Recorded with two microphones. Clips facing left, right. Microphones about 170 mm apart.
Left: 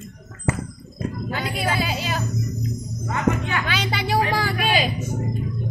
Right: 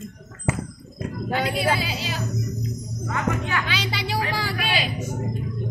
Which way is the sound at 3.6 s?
50° left (ahead or behind).